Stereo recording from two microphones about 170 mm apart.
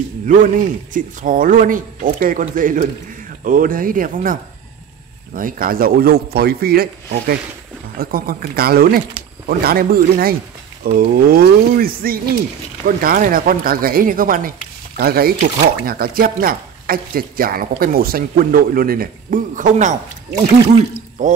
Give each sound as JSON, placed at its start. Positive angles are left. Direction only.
{"t": 0.4, "sound": "speech", "side_deg": -50}
{"t": 21.2, "sound": "speech", "side_deg": -45}